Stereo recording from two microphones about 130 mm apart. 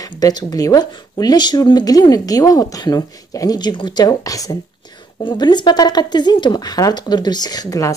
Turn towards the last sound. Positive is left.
turn(degrees=30)  # may be behind; listen again after turning